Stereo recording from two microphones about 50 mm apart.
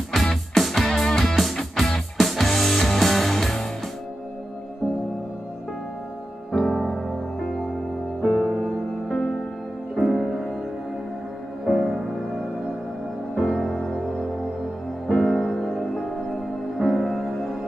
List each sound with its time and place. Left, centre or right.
0.1 s music: centre
6.5 s music: centre
8.2 s music: centre
11.6 s music: centre
13.3 s music: centre